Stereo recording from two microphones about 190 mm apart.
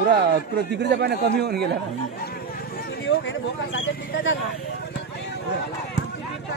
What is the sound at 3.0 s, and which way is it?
Speech, 80° left.